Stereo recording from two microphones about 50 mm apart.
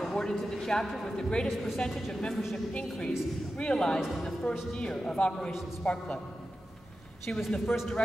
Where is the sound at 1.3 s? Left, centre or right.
Centre.